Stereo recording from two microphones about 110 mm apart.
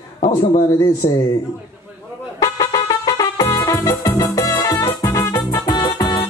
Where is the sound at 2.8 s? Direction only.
35° left (ahead or behind).